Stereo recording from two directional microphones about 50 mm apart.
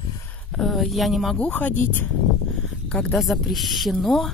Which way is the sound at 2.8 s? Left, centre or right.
Left.